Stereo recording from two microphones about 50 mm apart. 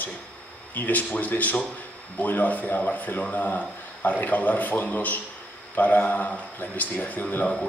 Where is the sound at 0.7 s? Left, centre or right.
Left.